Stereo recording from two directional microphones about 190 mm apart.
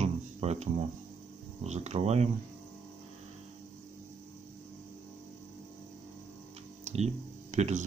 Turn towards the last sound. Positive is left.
turn(degrees=-40)  # may be behind; listen again after turning